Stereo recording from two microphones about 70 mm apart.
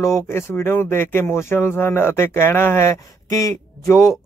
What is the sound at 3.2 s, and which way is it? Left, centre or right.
Speech, left.